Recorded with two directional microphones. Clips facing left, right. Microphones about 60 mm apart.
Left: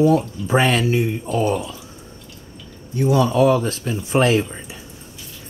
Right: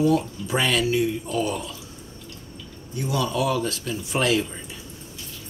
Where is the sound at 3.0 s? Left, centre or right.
Left.